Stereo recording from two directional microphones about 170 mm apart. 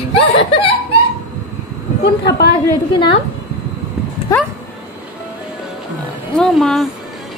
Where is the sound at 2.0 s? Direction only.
80° left.